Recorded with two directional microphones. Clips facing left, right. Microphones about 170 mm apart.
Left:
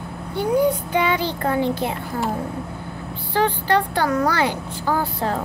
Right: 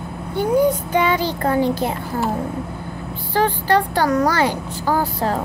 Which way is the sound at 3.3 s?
40° right (ahead or behind).